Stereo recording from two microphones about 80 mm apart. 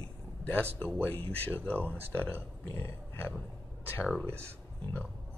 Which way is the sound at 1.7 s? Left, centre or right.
Right.